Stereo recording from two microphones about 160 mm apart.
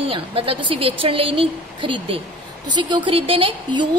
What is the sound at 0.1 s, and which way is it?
A woman's voice, 35° right (ahead or behind).